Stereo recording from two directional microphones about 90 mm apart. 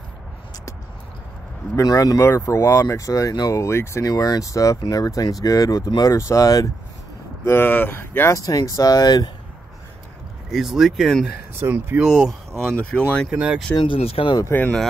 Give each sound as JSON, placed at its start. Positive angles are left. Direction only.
{"t": 1.8, "sound": "speech", "side_deg": 40}
{"t": 4.1, "sound": "speech", "side_deg": 40}
{"t": 6.1, "sound": "speech", "side_deg": 35}
{"t": 7.4, "sound": "speech", "side_deg": 25}
{"t": 8.4, "sound": "speech", "side_deg": 40}
{"t": 10.5, "sound": "speech", "side_deg": -5}
{"t": 11.6, "sound": "speech", "side_deg": -30}
{"t": 12.0, "sound": "speech", "side_deg": -5}
{"t": 13.3, "sound": "speech", "side_deg": -15}
{"t": 13.7, "sound": "speech", "side_deg": 80}